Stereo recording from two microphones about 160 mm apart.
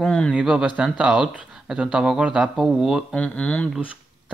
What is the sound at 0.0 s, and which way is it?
Speech, 5° left (ahead or behind).